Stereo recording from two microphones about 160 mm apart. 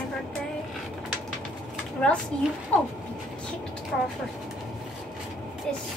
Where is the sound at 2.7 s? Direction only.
10° left (ahead or behind).